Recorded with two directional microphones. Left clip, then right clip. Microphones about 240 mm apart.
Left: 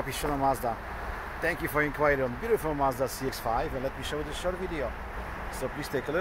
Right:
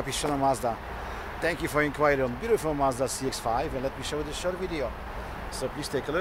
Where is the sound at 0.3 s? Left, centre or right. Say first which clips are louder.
Right 2 dB; centre.